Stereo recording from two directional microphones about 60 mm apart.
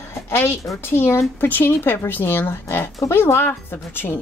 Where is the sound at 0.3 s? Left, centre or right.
Left.